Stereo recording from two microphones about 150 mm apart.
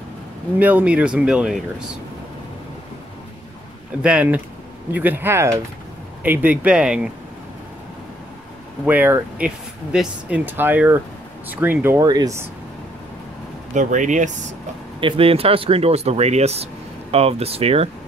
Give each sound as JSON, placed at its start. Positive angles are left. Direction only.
{"t": 0.6, "sound": "speech", "side_deg": -10}
{"t": 4.0, "sound": "speech", "side_deg": -10}
{"t": 8.8, "sound": "speech", "side_deg": -10}
{"t": 13.7, "sound": "speech", "side_deg": -55}
{"t": 15.0, "sound": "speech", "side_deg": -35}